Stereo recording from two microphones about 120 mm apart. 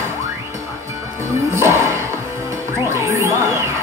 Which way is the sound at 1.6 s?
25° right (ahead or behind).